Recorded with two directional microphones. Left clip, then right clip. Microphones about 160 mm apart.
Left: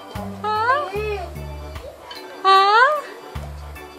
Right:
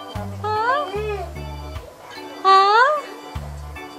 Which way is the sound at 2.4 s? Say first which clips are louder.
Even; 5° right (ahead or behind).